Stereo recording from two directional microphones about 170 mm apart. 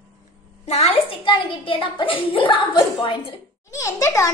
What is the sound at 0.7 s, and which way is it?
A child's voice, 40° left (ahead or behind).